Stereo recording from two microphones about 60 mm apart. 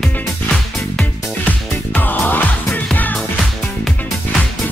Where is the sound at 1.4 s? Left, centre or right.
Left.